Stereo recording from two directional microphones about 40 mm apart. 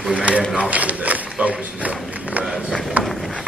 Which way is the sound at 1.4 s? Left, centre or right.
Right.